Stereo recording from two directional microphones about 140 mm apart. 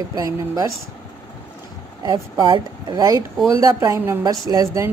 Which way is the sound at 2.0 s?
30° right (ahead or behind).